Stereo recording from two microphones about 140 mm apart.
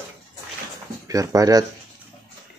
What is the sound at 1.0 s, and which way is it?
Speech, 25° right (ahead or behind).